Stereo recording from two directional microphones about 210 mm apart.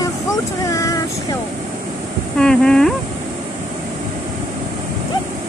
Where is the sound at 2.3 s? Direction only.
5° left (ahead or behind).